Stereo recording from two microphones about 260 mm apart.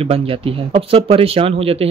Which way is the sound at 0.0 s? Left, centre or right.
Right.